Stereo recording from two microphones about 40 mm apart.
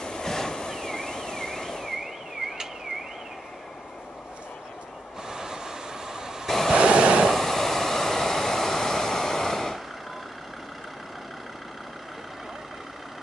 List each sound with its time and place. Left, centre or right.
0.0 s a sound: centre
5.3 s train: centre
6.4 s waves: centre
6.7 s waves: right
7.2 s vehicle: centre